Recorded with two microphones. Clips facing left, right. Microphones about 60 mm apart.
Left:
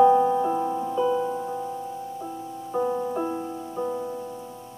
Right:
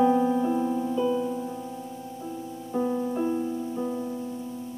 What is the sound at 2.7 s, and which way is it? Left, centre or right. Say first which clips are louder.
Music: left 1 dB; centre.